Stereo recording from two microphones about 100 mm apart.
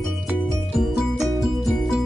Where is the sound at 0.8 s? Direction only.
5° right (ahead or behind).